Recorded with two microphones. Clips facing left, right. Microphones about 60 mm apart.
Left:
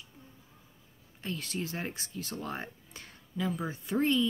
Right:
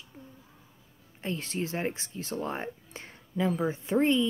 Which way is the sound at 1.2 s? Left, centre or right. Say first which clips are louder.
Right 4 dB; right.